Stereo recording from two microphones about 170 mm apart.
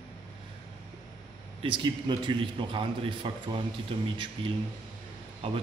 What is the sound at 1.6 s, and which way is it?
A man's voice, 30° right (ahead or behind).